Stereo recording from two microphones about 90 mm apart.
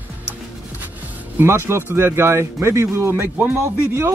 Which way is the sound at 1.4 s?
30° right (ahead or behind).